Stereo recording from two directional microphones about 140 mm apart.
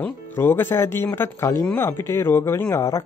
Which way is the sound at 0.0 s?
15° left (ahead or behind).